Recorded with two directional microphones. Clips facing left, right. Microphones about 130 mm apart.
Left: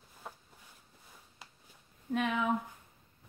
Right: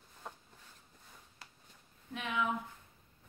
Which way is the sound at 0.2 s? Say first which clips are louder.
Left 1 dB; 5° left (ahead or behind).